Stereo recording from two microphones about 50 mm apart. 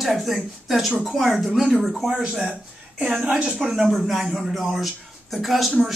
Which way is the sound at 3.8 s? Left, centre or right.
Centre.